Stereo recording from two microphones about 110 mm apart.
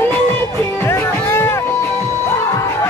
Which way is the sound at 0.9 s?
20° left (ahead or behind).